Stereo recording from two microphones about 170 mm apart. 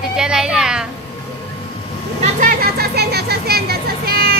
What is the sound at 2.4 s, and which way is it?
Music, 65° right (ahead or behind).